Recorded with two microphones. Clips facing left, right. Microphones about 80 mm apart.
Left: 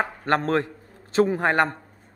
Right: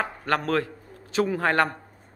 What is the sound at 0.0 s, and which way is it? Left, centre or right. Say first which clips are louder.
A man's voice: left 3 dB; left.